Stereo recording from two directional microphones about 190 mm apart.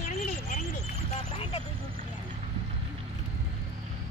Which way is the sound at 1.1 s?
35° left (ahead or behind).